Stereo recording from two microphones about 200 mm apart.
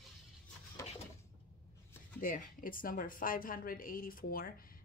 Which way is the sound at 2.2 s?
45° left (ahead or behind).